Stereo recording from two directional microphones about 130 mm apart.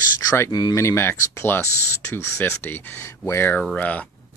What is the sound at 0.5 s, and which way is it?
Speech, 30° left (ahead or behind).